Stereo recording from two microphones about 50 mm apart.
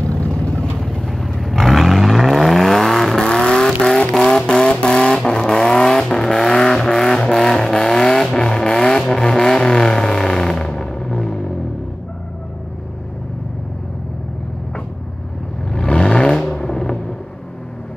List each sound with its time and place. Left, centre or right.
0.1 s vehicle: left; by 3.2 s centre
3.2 s vehicle: centre
3.6 s vehicle: centre
4.5 s vehicle: centre
15.7 s vehicle: centre
16.5 s a sound: centre